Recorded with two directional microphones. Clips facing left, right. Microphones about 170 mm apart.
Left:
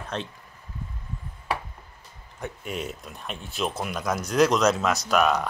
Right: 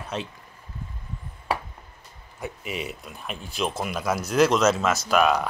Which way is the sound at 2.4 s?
5° right (ahead or behind).